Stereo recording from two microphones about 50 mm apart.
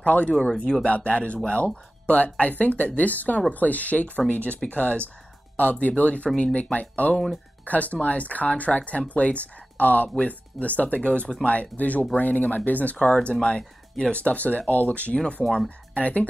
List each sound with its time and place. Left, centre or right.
0.0 s speech: left
11.1 s speech: centre
14.1 s speech: left